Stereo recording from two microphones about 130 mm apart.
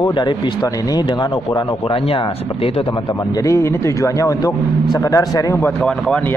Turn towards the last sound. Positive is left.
turn(degrees=10)  # may be behind; listen again after turning